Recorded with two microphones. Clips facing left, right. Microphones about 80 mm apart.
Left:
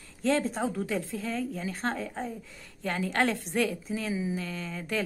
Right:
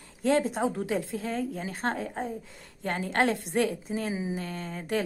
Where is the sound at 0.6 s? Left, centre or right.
Right.